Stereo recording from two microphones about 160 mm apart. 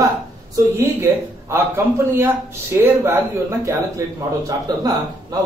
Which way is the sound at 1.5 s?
15° right (ahead or behind).